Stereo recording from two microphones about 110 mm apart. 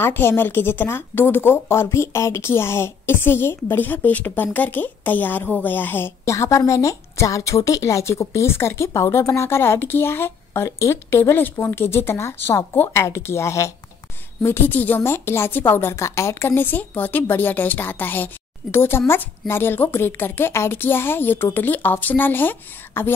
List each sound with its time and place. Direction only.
0.0 s a woman's voice: 20° left (ahead or behind)